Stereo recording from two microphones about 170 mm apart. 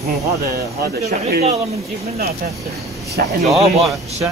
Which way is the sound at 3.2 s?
65° right (ahead or behind).